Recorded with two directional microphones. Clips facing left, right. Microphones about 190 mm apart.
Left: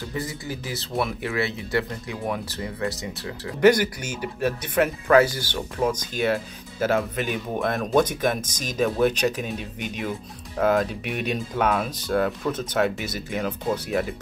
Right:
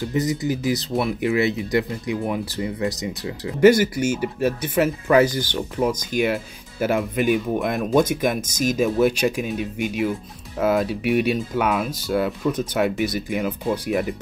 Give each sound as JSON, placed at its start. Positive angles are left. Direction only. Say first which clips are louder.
{"t": 0.1, "sound": "speech", "louder": "right 10 dB", "side_deg": -20}
{"t": 5.0, "sound": "speech", "louder": "even", "side_deg": -15}